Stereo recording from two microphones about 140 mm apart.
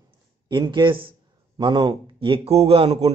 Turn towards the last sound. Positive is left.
turn(degrees=-45)  # may be behind; listen again after turning